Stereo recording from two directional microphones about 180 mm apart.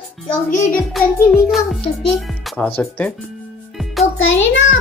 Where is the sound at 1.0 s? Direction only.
Centre (ahead or behind).